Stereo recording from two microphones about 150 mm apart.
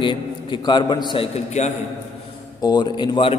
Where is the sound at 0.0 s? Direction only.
30° left (ahead or behind).